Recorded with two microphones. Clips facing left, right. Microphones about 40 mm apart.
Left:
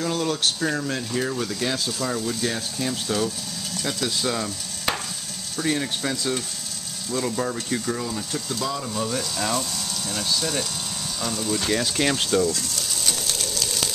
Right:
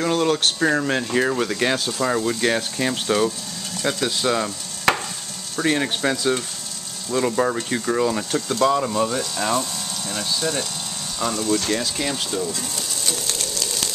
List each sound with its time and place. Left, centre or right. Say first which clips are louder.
0.0 s speech: right 5 dB; right
3.1 s speech: right 5 dB; centre
4.9 s stir: right 7 dB; right
5.6 s speech: right 4 dB; right
8.0 s speech: right 8 dB; right
8.9 s speech: right 5 dB; centre
9.2 s speech: right 3 dB; centre
11.4 s speech: even; centre
12.3 s speech: left 4 dB; centre
13.1 s bird: right 1 dB; centre